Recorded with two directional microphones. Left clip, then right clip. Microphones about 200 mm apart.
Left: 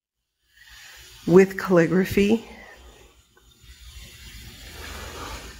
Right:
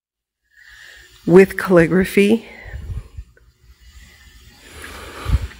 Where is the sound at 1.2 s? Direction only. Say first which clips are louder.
Right 5 dB; 25° right (ahead or behind).